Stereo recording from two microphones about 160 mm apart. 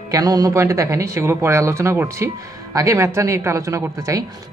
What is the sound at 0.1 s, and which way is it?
Speech, 20° right (ahead or behind).